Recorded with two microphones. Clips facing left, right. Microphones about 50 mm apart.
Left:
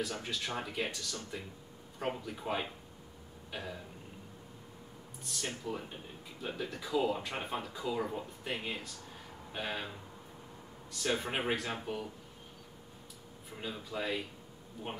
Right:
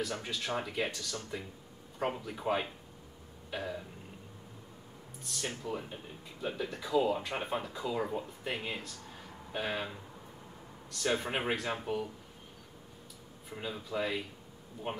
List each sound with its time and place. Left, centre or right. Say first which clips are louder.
0.0 s speech: right 1 dB; centre
3.4 s burping: right 4 dB; centre
5.2 s speech: right 1 dB; centre
13.5 s speech: right 3 dB; centre